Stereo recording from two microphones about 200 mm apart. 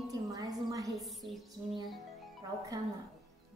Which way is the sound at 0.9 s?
Centre (ahead or behind).